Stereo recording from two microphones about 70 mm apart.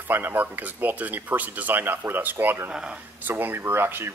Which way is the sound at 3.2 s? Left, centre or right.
Right.